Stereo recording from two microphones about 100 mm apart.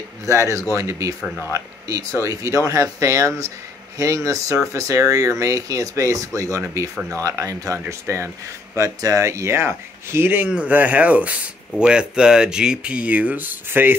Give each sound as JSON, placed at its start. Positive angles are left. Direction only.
{"t": 0.2, "sound": "speech", "side_deg": -30}